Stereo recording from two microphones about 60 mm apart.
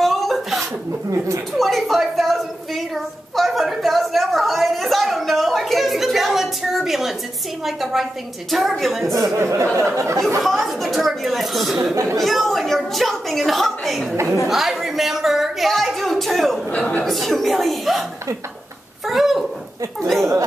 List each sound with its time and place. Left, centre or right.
0.0 s a sound: centre
1.5 s a woman's voice: centre
9.4 s speech: right
10.4 s a woman's voice: centre
11.9 s speech: right
12.2 s a woman's voice: centre
19.0 s a woman's voice: centre